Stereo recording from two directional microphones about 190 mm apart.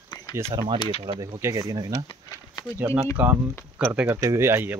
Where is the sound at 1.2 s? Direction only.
20° right (ahead or behind).